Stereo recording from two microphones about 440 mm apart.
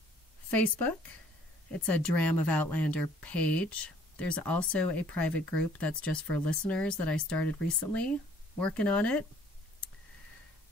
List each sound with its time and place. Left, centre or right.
0.5 s speech: centre
2.0 s speech: left
2.8 s speech: centre